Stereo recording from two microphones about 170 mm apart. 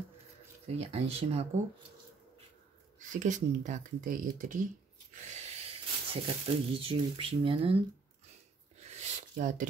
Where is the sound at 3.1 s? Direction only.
45° right (ahead or behind).